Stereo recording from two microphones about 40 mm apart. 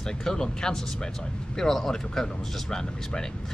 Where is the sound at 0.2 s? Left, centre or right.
Centre.